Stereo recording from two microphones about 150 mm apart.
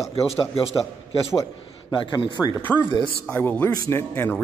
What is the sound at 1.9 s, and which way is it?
Speech, 35° left (ahead or behind).